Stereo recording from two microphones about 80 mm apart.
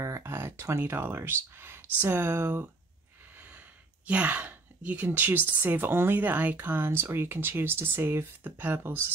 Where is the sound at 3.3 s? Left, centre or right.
Right.